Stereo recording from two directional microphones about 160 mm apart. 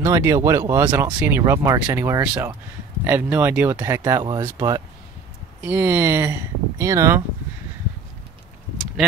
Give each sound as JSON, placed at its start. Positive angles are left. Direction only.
{"t": 0.0, "sound": "speech", "side_deg": -20}